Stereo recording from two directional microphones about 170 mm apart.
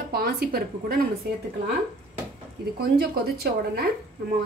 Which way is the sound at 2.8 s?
65° right (ahead or behind).